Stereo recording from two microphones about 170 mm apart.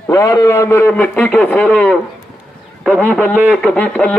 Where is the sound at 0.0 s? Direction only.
15° left (ahead or behind).